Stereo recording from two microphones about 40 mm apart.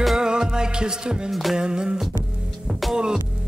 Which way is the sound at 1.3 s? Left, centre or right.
Centre.